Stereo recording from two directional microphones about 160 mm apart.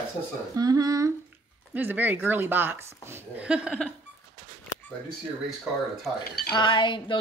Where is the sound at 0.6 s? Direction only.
25° right (ahead or behind).